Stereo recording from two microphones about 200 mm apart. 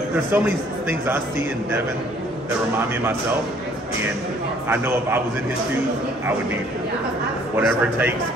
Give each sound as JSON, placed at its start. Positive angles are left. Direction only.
{"t": 0.3, "sound": "a man's voice", "side_deg": -10}
{"t": 4.6, "sound": "a man's voice", "side_deg": -10}
{"t": 7.5, "sound": "a man's voice", "side_deg": -10}